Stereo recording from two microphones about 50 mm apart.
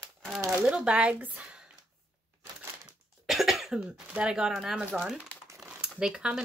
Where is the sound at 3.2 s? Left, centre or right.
Centre.